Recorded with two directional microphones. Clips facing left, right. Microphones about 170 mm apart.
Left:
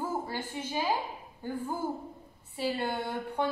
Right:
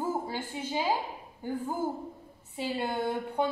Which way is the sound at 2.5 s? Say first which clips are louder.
Even; 20° right (ahead or behind).